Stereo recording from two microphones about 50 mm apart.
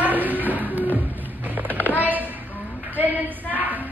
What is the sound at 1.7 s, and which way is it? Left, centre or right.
Music, right.